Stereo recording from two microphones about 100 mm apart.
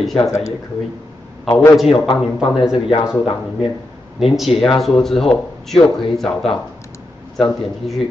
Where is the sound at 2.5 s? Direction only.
5° right (ahead or behind).